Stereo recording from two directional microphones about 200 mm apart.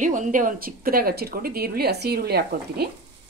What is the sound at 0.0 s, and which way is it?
A woman's voice, 40° right (ahead or behind).